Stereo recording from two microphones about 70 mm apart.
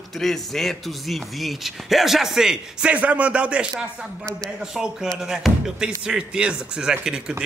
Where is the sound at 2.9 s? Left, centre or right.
Right.